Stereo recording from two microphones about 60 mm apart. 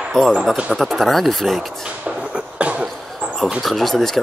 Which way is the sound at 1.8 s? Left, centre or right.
Centre.